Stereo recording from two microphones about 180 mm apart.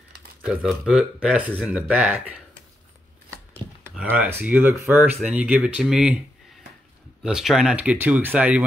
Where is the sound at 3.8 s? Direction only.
10° right (ahead or behind).